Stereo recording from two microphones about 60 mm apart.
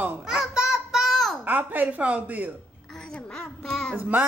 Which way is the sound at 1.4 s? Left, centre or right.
Right.